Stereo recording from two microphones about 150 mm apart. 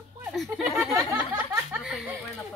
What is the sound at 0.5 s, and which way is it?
A woman's voice, centre (ahead or behind).